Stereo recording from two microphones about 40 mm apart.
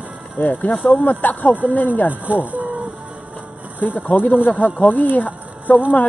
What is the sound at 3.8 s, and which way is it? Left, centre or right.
Speech, left.